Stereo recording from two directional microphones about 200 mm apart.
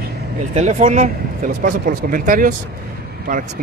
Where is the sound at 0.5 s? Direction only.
35° right (ahead or behind).